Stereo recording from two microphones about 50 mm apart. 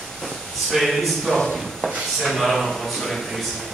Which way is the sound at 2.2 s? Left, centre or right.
Centre.